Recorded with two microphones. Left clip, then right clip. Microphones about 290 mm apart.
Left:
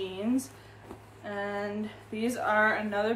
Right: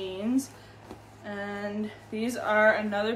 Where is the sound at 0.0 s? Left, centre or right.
Centre.